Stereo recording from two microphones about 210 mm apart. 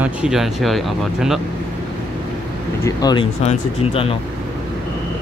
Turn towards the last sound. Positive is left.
turn(degrees=25)  # may be behind; listen again after turning